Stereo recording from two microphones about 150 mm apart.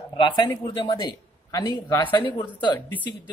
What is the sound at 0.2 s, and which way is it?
A man's voice, 30° left (ahead or behind).